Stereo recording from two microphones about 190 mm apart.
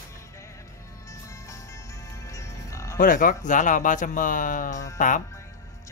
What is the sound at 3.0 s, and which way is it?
Speech, 45° left (ahead or behind).